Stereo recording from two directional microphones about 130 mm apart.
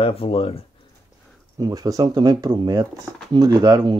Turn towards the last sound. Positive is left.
turn(degrees=-30)  # may be behind; listen again after turning